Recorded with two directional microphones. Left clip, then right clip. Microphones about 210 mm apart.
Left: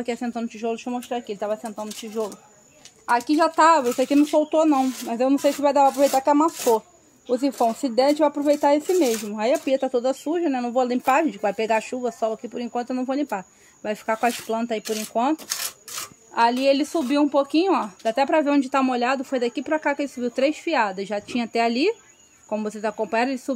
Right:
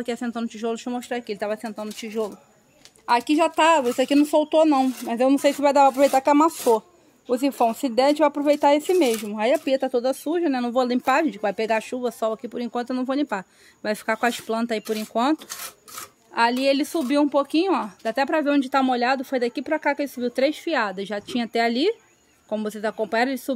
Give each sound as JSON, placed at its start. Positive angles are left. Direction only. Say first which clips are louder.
{"t": 0.0, "sound": "speech", "louder": "left 1 dB", "side_deg": -10}
{"t": 7.2, "sound": "speech", "louder": "even", "side_deg": -10}
{"t": 16.3, "sound": "speech", "louder": "left 1 dB", "side_deg": -10}